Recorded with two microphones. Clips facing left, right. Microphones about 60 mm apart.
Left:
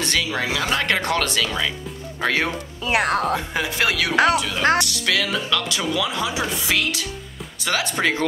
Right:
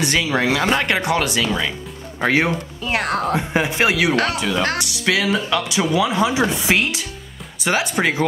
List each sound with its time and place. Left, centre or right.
0.0 s speech: right
0.7 s speech: centre
2.9 s speech: centre
3.3 s speech: right
4.1 s speech: centre
4.7 s speech: centre